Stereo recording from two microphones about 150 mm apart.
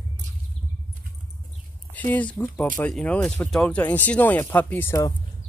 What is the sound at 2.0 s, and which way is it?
Speech, 10° left (ahead or behind).